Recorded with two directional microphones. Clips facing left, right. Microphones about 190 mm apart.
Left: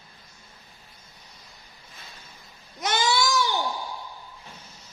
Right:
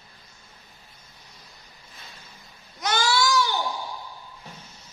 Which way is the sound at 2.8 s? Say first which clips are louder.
Even; 20° left (ahead or behind).